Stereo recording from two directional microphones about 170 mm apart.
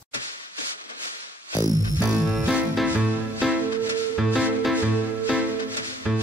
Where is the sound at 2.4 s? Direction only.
5° right (ahead or behind).